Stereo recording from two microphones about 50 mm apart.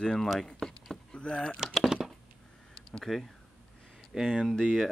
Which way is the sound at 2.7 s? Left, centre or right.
Centre.